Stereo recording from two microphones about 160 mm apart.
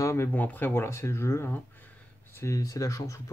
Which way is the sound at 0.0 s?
15° left (ahead or behind).